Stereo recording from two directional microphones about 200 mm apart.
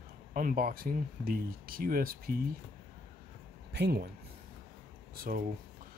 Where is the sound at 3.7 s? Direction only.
55° right (ahead or behind).